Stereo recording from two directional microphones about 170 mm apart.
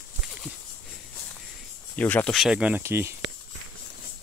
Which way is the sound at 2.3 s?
5° right (ahead or behind).